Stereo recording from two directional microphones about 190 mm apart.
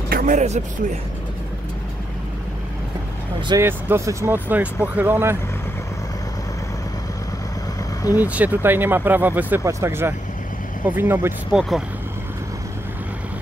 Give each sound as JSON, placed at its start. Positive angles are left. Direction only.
{"t": 0.1, "sound": "speech", "side_deg": -40}
{"t": 3.3, "sound": "speech", "side_deg": -25}
{"t": 8.2, "sound": "speech", "side_deg": -10}